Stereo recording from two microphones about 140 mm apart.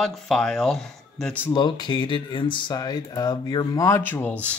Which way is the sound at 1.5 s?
30° left (ahead or behind).